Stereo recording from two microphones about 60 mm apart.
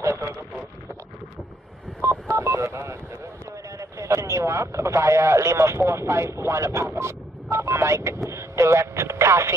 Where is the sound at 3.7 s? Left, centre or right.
Right.